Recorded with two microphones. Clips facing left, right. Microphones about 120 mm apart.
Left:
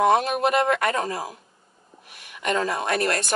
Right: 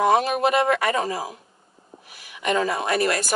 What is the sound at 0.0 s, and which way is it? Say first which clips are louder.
Speech: even; centre (ahead or behind).